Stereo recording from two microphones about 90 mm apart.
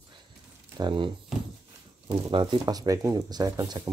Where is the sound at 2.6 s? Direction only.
45° right (ahead or behind).